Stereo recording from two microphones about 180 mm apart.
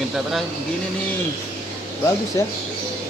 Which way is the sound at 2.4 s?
20° left (ahead or behind).